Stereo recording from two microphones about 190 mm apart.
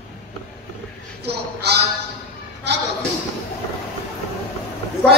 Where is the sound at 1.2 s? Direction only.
60° right (ahead or behind).